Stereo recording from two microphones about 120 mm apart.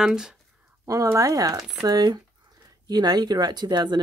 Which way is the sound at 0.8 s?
30° right (ahead or behind).